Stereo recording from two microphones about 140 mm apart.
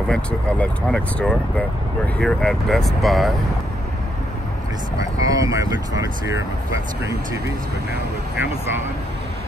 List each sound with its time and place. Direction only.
0.1 s speech: 10° left (ahead or behind)
5.1 s speech: 25° right (ahead or behind)